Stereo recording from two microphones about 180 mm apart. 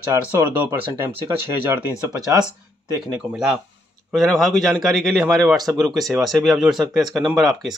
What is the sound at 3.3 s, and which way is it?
Speech, 5° right (ahead or behind).